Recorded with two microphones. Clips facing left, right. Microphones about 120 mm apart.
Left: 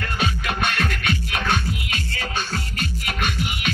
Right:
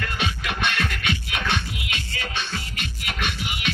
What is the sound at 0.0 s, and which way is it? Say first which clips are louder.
Music: left 3 dB; 45° left (ahead or behind).